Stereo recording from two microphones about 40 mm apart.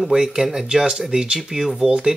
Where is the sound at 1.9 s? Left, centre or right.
Right.